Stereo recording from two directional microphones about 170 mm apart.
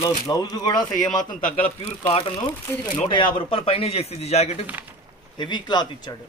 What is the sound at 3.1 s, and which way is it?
Speech, 30° left (ahead or behind).